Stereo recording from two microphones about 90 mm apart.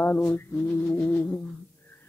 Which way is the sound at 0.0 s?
20° left (ahead or behind).